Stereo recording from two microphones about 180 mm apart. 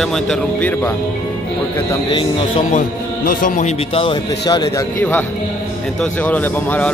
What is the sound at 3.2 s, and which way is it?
A man's voice, 45° left (ahead or behind).